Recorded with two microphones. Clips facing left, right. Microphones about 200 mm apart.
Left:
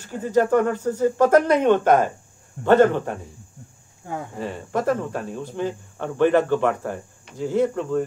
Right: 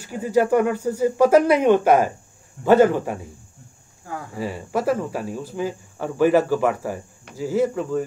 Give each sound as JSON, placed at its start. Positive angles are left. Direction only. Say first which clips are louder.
{"t": 0.0, "sound": "speech", "louder": "right 1 dB", "side_deg": -10}
{"t": 4.0, "sound": "speech", "louder": "left 2 dB", "side_deg": 25}
{"t": 4.4, "sound": "speech", "louder": "right 2 dB", "side_deg": -5}